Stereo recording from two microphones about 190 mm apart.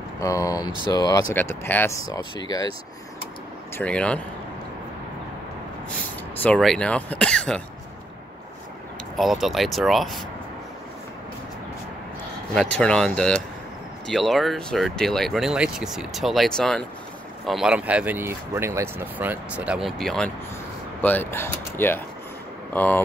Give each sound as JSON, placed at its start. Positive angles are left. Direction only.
{"t": 0.2, "sound": "speech", "side_deg": 15}
{"t": 3.7, "sound": "speech", "side_deg": 5}
{"t": 6.4, "sound": "speech", "side_deg": 5}
{"t": 9.1, "sound": "speech", "side_deg": 0}
{"t": 12.5, "sound": "speech", "side_deg": 5}